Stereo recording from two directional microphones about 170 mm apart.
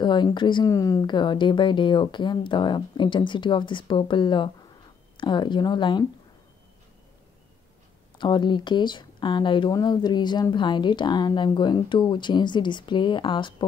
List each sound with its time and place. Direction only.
0.0 s speech: 25° left (ahead or behind)
8.2 s speech: 25° left (ahead or behind)